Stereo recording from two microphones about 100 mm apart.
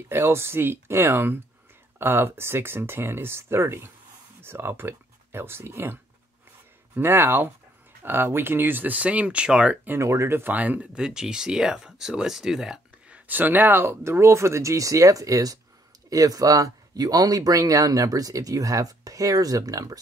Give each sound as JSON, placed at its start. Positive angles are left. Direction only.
{"t": 0.1, "sound": "speech", "side_deg": -25}
{"t": 7.0, "sound": "speech", "side_deg": -20}
{"t": 9.9, "sound": "speech", "side_deg": -30}
{"t": 13.3, "sound": "speech", "side_deg": -20}